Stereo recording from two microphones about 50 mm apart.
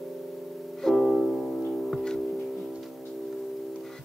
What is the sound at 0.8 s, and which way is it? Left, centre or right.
Music, centre.